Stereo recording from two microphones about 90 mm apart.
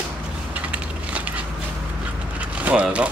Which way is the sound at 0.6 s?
15° right (ahead or behind).